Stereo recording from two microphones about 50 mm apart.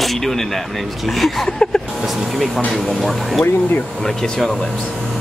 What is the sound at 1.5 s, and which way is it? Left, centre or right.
Speech, centre.